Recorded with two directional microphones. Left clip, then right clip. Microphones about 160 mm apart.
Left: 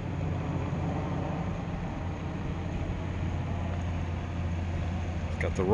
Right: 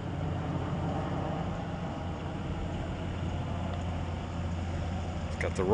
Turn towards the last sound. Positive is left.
turn(degrees=20)  # may be behind; listen again after turning